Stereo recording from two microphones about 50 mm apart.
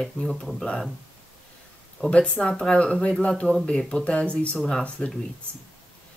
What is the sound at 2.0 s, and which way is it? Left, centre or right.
Speech, left.